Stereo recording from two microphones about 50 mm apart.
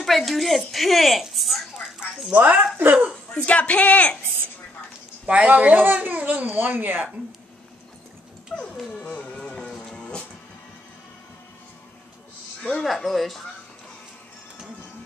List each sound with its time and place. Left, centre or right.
0.0 s a woman's voice: centre
2.3 s speech: right
3.3 s a man's voice: left
5.2 s speech: right
8.5 s music: centre
9.7 s music: centre
12.8 s speech: centre